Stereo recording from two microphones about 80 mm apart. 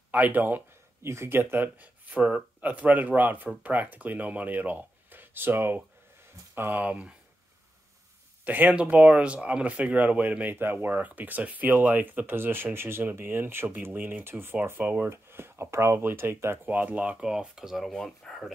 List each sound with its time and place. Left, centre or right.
0.1 s speech: right
6.8 s speech: centre
8.5 s speech: right
16.7 s speech: centre